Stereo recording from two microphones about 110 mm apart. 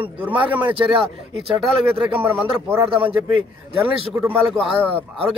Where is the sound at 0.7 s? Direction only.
55° right (ahead or behind).